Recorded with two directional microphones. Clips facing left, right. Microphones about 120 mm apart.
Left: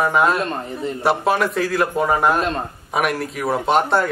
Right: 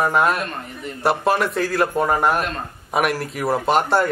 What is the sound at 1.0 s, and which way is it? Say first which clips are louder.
A man's voice: even; centre (ahead or behind).